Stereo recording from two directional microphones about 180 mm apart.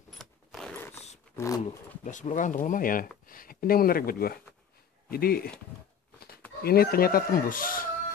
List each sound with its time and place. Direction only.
0.2 s zipper: centre (ahead or behind)
1.3 s speech: 15° left (ahead or behind)
2.0 s speech: 45° left (ahead or behind)
6.6 s speech: 55° left (ahead or behind)